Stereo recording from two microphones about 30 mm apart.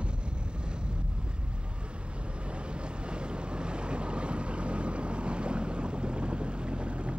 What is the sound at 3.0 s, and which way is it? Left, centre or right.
Boat, right.